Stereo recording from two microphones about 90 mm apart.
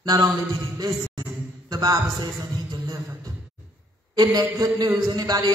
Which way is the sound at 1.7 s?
45° right (ahead or behind).